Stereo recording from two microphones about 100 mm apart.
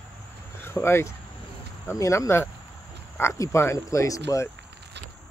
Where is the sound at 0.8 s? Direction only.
25° left (ahead or behind).